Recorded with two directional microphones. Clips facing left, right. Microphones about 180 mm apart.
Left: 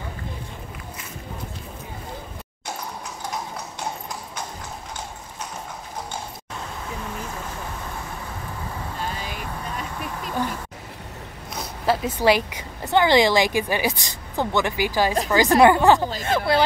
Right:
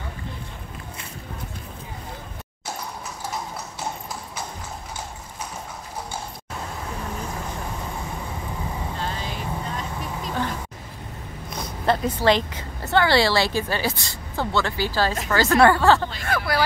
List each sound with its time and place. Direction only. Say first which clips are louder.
8.9 s vehicle: right 1 dB; 10° left (ahead or behind)
11.8 s a woman's voice: even; 5° left (ahead or behind); by 16.6 s 20° left (ahead or behind)